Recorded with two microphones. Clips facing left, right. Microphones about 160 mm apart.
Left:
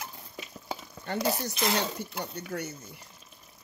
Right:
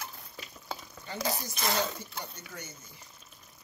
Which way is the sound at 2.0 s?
65° left (ahead or behind).